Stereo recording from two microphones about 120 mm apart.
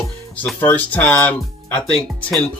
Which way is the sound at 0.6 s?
15° left (ahead or behind).